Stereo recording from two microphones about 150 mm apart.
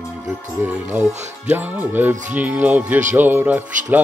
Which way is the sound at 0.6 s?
10° right (ahead or behind).